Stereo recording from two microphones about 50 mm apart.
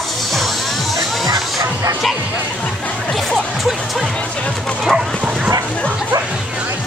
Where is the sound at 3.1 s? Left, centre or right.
Centre.